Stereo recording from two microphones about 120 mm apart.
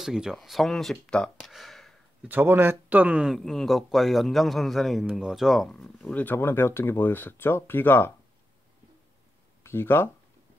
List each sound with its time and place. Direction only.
0.0 s a man's voice: 5° right (ahead or behind)
2.2 s speech: 15° right (ahead or behind)
3.3 s a man's voice: centre (ahead or behind); by 8.1 s 20° left (ahead or behind)
9.6 s speech: 20° left (ahead or behind)